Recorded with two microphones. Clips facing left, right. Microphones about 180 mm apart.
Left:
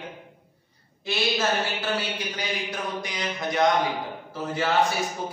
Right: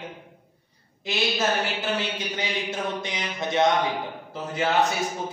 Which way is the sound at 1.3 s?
20° right (ahead or behind).